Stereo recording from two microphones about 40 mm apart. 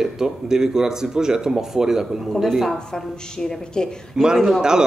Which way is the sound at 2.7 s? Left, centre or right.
Centre.